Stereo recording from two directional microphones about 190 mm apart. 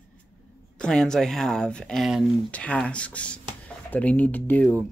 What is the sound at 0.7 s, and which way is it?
Speech, 5° left (ahead or behind).